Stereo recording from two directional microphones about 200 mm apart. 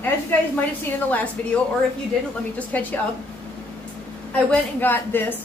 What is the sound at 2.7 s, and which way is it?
Speech, 10° left (ahead or behind).